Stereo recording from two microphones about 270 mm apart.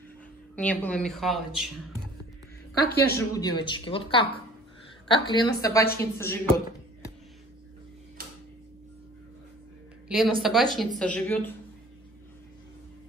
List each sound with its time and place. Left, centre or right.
0.6 s speech: centre
2.8 s a woman's voice: left
3.3 s speech: centre
10.0 s speech: centre